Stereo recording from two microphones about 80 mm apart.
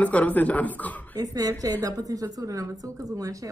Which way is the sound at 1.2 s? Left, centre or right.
Right.